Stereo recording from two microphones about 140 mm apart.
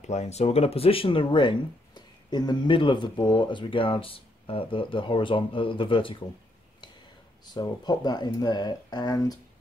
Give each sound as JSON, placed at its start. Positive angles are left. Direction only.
{"t": 0.0, "sound": "speech", "side_deg": 50}
{"t": 7.5, "sound": "speech", "side_deg": 30}